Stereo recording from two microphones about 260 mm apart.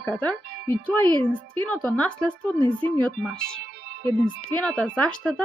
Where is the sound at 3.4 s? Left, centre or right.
Right.